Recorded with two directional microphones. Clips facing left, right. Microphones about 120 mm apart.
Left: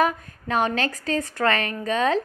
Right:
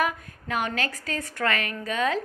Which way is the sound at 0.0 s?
40° left (ahead or behind).